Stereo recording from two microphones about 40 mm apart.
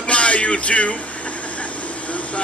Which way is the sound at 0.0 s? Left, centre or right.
Left.